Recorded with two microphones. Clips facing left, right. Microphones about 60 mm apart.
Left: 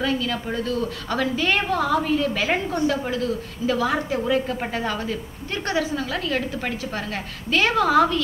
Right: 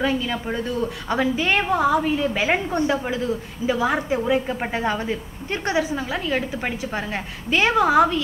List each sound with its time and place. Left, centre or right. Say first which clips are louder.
0.0 s a woman's voice: right 1 dB; centre